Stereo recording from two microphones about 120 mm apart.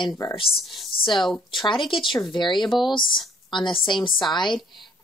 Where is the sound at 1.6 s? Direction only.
45° left (ahead or behind).